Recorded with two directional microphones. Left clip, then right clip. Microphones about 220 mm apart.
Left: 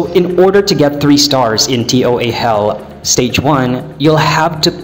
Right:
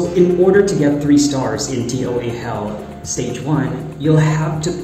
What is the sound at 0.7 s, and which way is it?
Speech, 35° left (ahead or behind).